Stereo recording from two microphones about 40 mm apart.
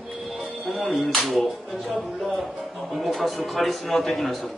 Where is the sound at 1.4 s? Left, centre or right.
Centre.